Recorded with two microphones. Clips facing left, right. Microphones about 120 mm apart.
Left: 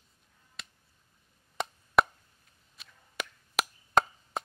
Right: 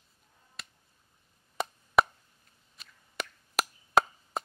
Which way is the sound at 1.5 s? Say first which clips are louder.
Even; centre (ahead or behind).